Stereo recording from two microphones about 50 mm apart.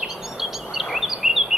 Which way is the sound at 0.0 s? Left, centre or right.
Centre.